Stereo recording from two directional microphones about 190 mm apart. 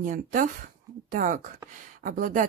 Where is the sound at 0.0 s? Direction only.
45° right (ahead or behind).